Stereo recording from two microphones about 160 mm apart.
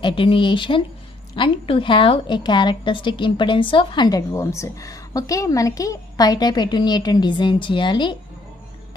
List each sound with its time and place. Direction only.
0.0 s a woman's voice: 35° left (ahead or behind)